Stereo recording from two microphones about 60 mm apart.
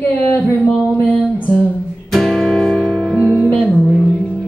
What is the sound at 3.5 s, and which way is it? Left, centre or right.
Music, left.